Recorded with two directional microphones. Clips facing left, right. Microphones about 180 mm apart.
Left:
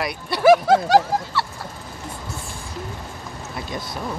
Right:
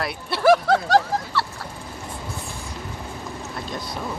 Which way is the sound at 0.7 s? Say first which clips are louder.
Left 3 dB; 20° left (ahead or behind).